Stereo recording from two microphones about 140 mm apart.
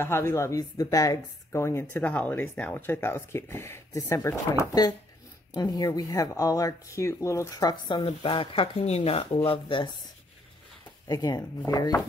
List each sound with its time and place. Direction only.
0.0 s a woman's voice: 20° left (ahead or behind)
8.0 s speech: 40° left (ahead or behind)
11.1 s a woman's voice: 25° left (ahead or behind)